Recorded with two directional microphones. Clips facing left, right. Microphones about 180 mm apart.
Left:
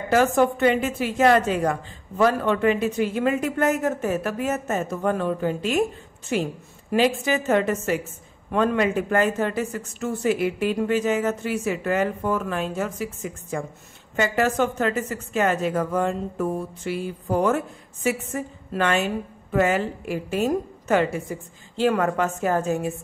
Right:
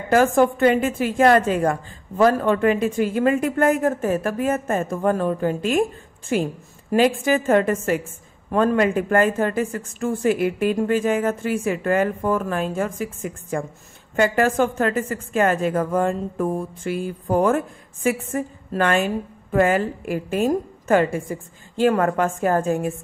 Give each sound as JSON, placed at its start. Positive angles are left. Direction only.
{"t": 0.1, "sound": "speech", "side_deg": -50}